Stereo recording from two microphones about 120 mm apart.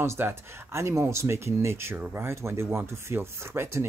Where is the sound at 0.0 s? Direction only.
20° right (ahead or behind).